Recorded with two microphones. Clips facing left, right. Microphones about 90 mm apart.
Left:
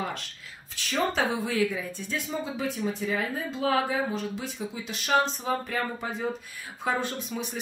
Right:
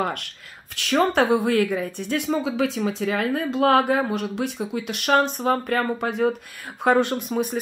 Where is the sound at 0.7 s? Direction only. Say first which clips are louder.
Right 8 dB; 65° right (ahead or behind).